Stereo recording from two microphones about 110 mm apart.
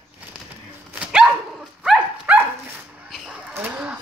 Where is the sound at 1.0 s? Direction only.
10° right (ahead or behind).